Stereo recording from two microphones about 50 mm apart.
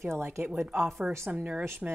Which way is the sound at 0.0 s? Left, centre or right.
Right.